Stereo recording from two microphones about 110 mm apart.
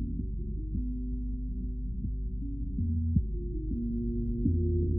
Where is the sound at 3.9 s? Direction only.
10° left (ahead or behind).